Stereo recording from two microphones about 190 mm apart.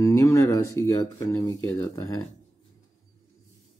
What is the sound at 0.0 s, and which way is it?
Speech, 15° left (ahead or behind).